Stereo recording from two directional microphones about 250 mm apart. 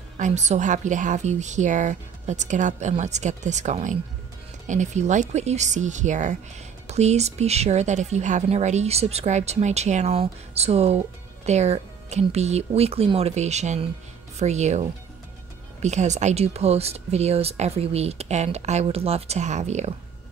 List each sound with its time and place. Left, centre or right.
0.2 s speech: right